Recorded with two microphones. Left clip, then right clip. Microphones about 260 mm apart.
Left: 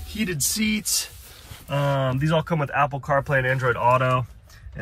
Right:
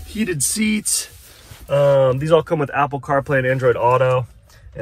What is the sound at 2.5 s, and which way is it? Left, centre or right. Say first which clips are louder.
Speech: right 4 dB; centre.